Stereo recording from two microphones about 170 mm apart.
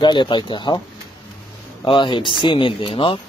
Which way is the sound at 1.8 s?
25° left (ahead or behind).